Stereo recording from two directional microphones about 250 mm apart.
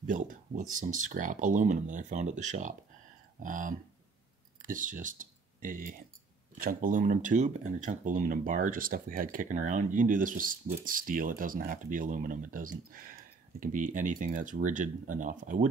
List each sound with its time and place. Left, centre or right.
0.0 s speech: right